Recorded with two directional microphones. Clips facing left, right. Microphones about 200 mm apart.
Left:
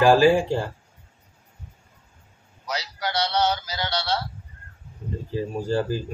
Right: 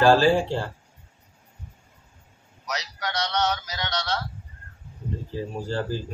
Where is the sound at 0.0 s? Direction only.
15° left (ahead or behind).